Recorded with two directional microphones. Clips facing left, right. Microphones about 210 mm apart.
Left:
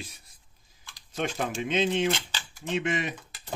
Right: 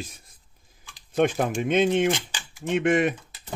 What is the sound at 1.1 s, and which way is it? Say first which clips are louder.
Speech: right 9 dB; 55° right (ahead or behind).